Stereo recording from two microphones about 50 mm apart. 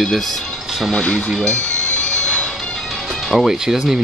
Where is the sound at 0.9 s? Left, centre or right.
Left.